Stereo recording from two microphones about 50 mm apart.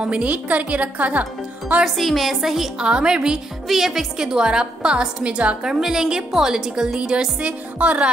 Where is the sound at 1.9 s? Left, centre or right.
Centre.